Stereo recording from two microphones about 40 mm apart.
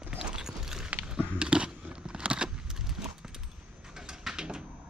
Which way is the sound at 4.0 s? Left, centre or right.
Centre.